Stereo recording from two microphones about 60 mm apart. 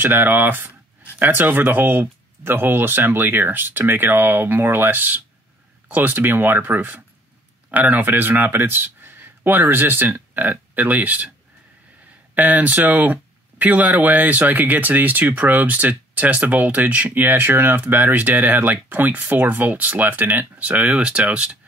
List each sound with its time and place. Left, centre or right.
0.0 s speech: right
12.4 s speech: right